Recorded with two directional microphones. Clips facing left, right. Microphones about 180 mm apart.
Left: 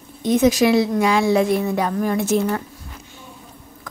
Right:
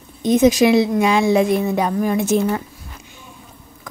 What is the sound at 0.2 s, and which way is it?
Speech, 20° right (ahead or behind).